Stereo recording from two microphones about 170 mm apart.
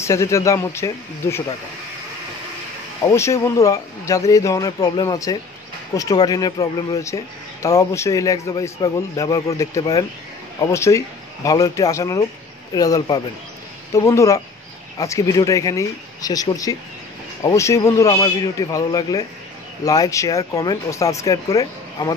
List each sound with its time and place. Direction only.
0.0 s speech: 15° left (ahead or behind)
3.0 s a man's voice: 20° left (ahead or behind)